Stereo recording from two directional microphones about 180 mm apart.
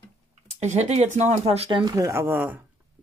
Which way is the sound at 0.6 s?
40° right (ahead or behind).